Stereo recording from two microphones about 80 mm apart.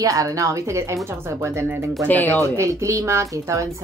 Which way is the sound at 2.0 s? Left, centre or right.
Left.